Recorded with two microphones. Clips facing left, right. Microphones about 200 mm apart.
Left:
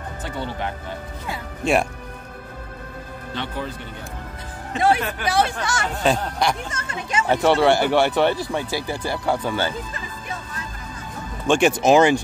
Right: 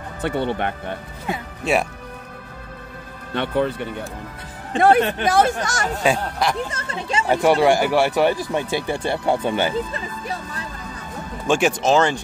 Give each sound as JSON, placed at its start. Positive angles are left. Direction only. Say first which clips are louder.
{"t": 0.2, "sound": "speech", "louder": "right 7 dB", "side_deg": -60}
{"t": 1.6, "sound": "speech", "louder": "left 1 dB", "side_deg": -5}
{"t": 3.3, "sound": "speech", "louder": "right 9 dB", "side_deg": -60}
{"t": 5.9, "sound": "speech", "louder": "even", "side_deg": -5}
{"t": 6.7, "sound": "speech", "louder": "right 2 dB", "side_deg": -30}
{"t": 7.2, "sound": "speech", "louder": "right 1 dB", "side_deg": -10}
{"t": 8.5, "sound": "speech", "louder": "right 3 dB", "side_deg": -20}
{"t": 9.9, "sound": "speech", "louder": "right 4 dB", "side_deg": -35}
{"t": 11.4, "sound": "speech", "louder": "left 1 dB", "side_deg": -5}
{"t": 11.8, "sound": "speech", "louder": "left 3 dB", "side_deg": 10}